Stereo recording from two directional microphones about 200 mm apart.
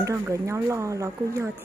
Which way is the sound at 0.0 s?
15° right (ahead or behind).